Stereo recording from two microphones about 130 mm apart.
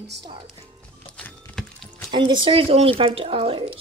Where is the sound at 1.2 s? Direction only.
10° left (ahead or behind).